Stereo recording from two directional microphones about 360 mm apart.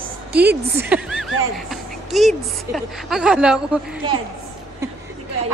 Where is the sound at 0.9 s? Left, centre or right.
Centre.